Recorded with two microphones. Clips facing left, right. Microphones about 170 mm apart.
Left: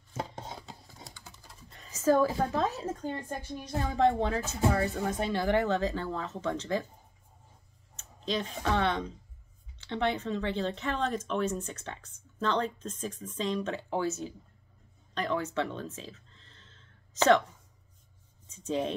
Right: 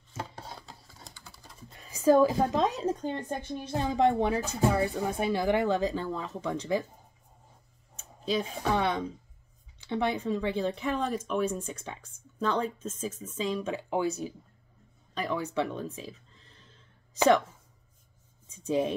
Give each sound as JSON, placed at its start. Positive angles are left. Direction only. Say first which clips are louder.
{"t": 0.4, "sound": "scissors", "louder": "left 2 dB", "side_deg": 20}
{"t": 1.8, "sound": "speech", "louder": "right 3 dB", "side_deg": -10}
{"t": 7.9, "sound": "speech", "louder": "right 3 dB", "side_deg": -10}
{"t": 15.1, "sound": "a sound", "louder": "right 1 dB", "side_deg": -10}
{"t": 18.5, "sound": "speech", "louder": "right 3 dB", "side_deg": -10}